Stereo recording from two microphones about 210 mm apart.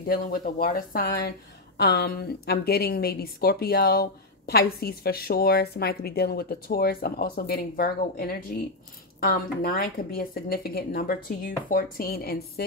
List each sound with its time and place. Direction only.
0.0 s a woman's voice: 45° left (ahead or behind)